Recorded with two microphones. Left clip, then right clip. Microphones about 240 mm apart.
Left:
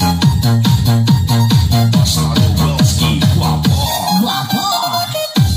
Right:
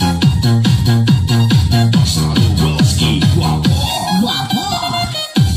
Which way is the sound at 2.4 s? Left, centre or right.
Left.